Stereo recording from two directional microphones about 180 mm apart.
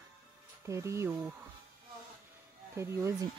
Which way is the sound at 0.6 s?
15° right (ahead or behind).